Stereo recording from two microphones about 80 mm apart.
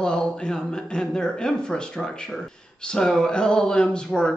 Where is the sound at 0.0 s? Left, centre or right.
Centre.